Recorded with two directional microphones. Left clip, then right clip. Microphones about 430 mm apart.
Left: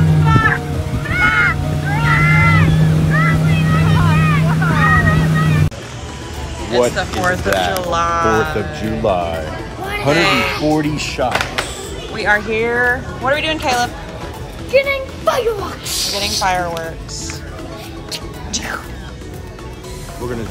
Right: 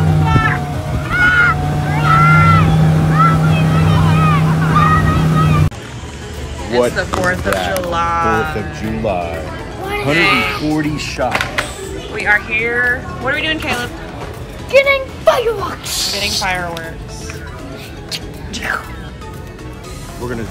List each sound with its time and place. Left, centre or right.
0.0 s vehicle: centre
6.7 s speech: centre
10.3 s speech: centre
11.1 s speech: centre
18.1 s music: centre
20.2 s speech: centre